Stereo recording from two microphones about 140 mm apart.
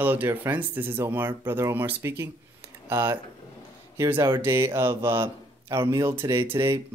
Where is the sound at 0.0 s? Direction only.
10° right (ahead or behind).